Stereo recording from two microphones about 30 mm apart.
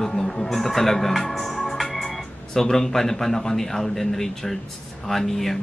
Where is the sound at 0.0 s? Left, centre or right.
Centre.